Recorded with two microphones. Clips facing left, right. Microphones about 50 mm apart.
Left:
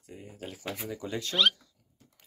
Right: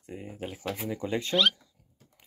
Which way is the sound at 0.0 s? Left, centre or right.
Right.